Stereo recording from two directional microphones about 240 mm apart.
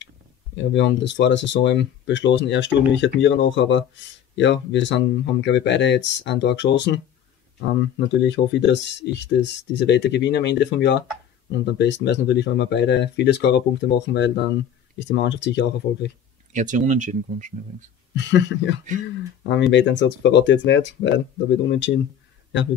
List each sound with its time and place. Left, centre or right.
0.6 s speech: left
8.1 s speech: left
16.5 s speech: right
18.1 s speech: left